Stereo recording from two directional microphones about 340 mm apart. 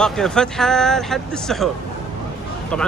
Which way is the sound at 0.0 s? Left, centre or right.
Centre.